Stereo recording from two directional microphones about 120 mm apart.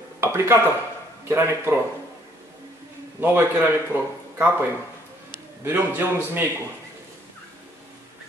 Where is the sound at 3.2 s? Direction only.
15° right (ahead or behind).